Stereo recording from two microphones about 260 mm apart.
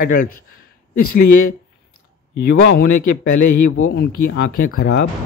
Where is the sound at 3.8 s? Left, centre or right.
Left.